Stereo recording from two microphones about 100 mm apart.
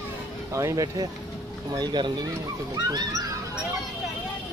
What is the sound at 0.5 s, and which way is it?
Speech, 30° right (ahead or behind).